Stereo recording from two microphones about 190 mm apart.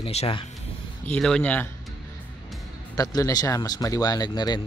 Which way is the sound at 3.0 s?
20° left (ahead or behind).